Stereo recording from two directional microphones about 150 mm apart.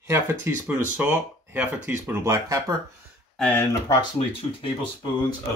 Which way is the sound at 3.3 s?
10° left (ahead or behind).